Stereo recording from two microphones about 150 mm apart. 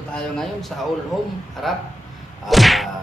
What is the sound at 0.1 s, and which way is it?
Whip, 5° left (ahead or behind).